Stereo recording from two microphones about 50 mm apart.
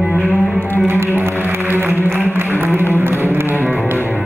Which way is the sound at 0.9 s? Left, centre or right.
Right.